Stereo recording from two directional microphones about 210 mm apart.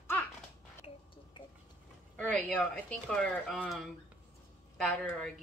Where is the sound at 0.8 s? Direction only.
30° left (ahead or behind).